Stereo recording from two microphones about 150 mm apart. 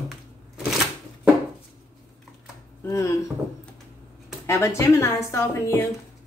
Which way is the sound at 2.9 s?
20° left (ahead or behind).